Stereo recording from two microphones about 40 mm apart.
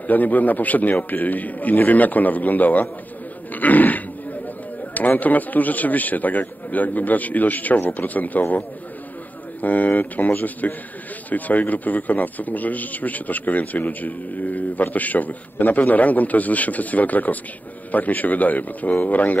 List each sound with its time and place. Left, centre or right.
0.0 s a man's voice: left